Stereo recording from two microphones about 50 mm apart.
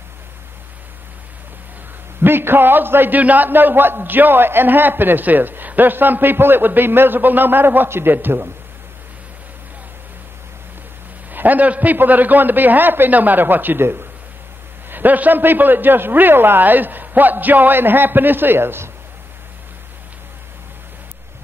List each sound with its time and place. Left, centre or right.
2.2 s a man's voice: right
11.3 s a man's voice: right
14.9 s a man's voice: right